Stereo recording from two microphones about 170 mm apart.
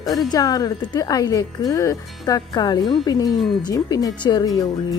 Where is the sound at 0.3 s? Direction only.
20° left (ahead or behind).